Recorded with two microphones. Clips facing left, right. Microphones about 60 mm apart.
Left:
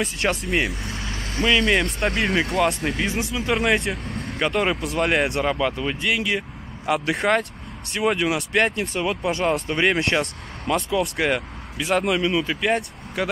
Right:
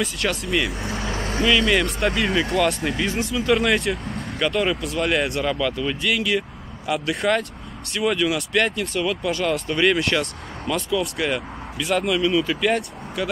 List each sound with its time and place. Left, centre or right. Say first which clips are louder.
0.2 s speech: left 2 dB; left
1.1 s vehicle: right 5 dB; right
1.6 s speech: right 1 dB; centre
3.9 s vehicle: right 2 dB; centre
4.4 s speech: even; left
6.9 s speech: left 1 dB; left
12.2 s speech: right 2 dB; centre
12.4 s speech: right 1 dB; left
13.2 s speech: left 1 dB; left